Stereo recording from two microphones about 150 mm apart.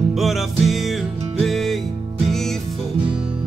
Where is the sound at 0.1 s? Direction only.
Centre (ahead or behind).